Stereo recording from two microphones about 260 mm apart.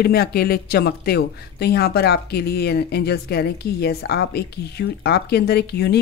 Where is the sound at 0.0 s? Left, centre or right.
Left.